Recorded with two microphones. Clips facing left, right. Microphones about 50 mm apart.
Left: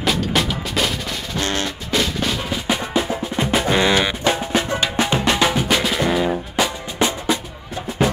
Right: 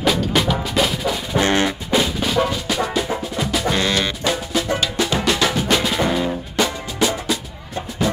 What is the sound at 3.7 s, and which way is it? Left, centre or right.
Music, left.